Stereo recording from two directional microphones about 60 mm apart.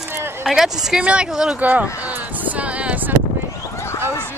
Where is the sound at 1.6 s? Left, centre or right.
Right.